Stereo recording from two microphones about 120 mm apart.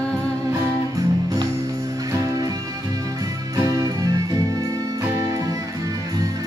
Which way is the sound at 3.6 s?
25° right (ahead or behind).